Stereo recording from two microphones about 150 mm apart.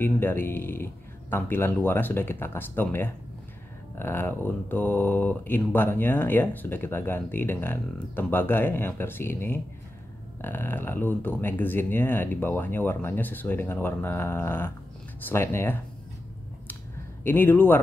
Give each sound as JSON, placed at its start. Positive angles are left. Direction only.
{"t": 0.0, "sound": "speech", "side_deg": 15}
{"t": 17.2, "sound": "speech", "side_deg": 15}